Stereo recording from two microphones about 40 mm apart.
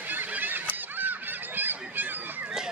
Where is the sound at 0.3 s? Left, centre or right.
Right.